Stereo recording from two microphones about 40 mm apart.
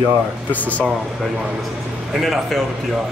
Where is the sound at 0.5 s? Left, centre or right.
Left.